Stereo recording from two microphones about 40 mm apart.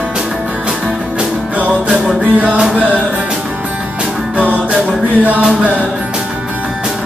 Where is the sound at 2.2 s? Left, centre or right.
Right.